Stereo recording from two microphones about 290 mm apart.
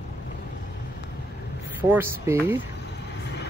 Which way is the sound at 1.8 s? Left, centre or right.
Centre.